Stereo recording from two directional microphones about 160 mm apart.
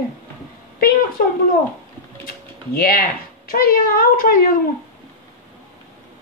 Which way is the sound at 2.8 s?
70° left (ahead or behind).